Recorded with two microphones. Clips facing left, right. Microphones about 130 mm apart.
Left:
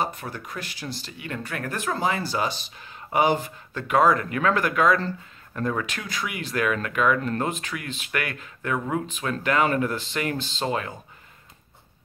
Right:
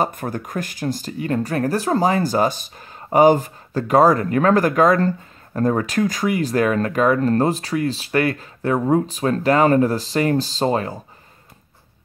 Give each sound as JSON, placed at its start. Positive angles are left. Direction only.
{"t": 0.0, "sound": "speech", "side_deg": -45}